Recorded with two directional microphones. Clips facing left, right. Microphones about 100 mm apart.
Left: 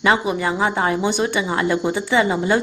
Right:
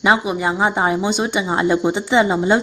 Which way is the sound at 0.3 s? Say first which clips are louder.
Right 1 dB; 20° right (ahead or behind).